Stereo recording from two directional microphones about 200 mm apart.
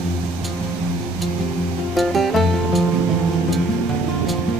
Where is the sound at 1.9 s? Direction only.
Centre (ahead or behind).